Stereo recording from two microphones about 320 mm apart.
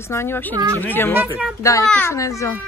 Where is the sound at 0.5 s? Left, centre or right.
Centre.